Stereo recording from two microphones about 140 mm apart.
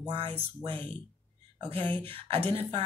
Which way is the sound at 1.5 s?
45° right (ahead or behind).